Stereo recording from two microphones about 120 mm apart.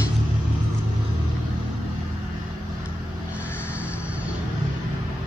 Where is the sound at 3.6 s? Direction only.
10° right (ahead or behind).